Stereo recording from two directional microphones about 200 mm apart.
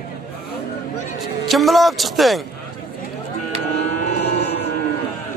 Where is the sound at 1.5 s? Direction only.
Centre (ahead or behind).